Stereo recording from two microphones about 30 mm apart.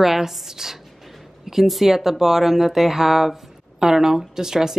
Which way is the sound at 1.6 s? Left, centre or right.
Centre.